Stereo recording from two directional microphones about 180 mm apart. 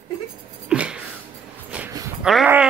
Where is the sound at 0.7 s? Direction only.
5° right (ahead or behind).